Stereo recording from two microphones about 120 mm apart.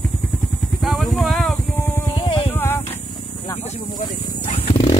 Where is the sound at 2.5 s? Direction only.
20° left (ahead or behind).